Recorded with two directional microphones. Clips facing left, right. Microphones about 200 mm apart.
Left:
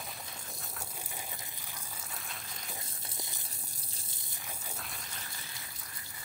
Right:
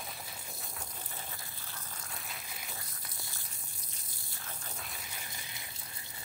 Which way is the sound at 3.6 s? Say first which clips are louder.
Left 2 dB; 35° left (ahead or behind).